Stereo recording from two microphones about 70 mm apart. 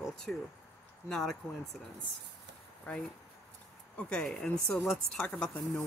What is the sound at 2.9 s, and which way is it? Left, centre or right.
Speech, centre.